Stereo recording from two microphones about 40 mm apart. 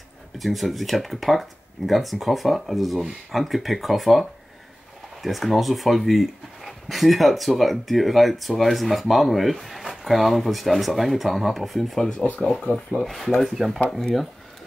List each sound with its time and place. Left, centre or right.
0.4 s speech: centre
12.2 s speech: centre